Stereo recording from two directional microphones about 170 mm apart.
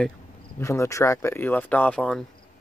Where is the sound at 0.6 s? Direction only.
15° left (ahead or behind).